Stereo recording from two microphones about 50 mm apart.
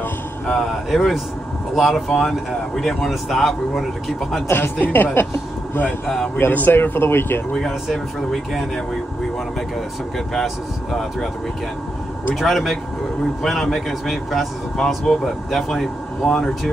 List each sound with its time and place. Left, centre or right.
0.5 s speech: centre
4.7 s a woman's voice: left
6.0 s speech: centre
6.3 s speech: left
7.5 s speech: centre
10.1 s speech: centre
12.4 s speech: centre